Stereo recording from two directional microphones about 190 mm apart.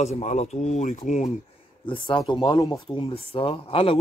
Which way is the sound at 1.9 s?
25° left (ahead or behind).